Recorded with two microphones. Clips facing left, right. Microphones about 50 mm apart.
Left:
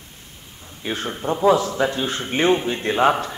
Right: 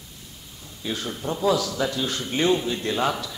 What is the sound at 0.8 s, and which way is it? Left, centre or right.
A man's voice, left.